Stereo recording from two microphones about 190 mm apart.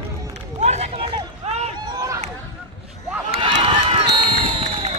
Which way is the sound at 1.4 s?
35° right (ahead or behind).